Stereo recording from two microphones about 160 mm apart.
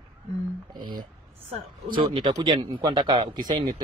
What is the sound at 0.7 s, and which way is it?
Speech, 30° right (ahead or behind).